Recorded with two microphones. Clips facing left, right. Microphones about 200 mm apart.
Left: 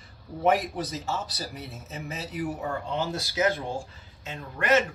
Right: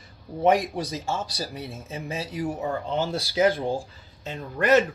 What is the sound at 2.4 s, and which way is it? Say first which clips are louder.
Speech: right 3 dB; 25° right (ahead or behind).